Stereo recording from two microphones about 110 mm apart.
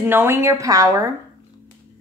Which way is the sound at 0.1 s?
20° right (ahead or behind).